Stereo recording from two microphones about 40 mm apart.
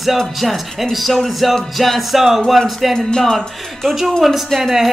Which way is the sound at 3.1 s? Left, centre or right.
Centre.